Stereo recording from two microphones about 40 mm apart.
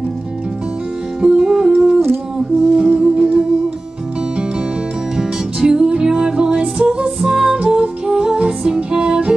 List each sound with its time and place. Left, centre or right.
1.2 s music: centre
5.1 s music: centre
7.2 s music: centre